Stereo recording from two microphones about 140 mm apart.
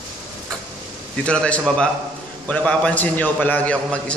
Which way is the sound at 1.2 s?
10° left (ahead or behind).